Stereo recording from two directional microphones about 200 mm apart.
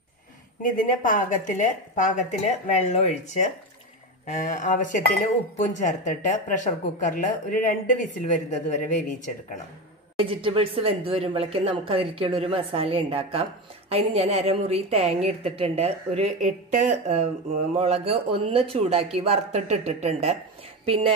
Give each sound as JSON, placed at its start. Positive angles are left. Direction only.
{"t": 0.6, "sound": "speech", "side_deg": 45}
{"t": 10.2, "sound": "a woman's voice", "side_deg": -25}